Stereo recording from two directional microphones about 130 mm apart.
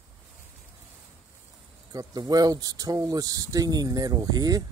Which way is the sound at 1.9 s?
30° right (ahead or behind).